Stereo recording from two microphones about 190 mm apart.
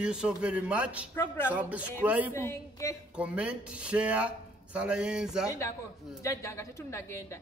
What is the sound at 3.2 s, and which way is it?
A man's voice, 5° right (ahead or behind).